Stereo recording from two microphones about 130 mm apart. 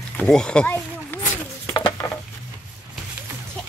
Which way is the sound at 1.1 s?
15° left (ahead or behind).